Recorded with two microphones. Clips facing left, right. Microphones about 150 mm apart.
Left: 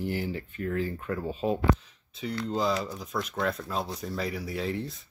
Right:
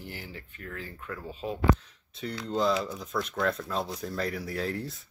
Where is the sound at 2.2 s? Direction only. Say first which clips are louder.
Even; centre (ahead or behind).